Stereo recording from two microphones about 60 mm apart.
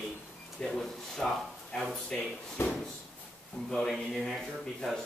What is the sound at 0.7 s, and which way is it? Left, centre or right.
Speech, centre.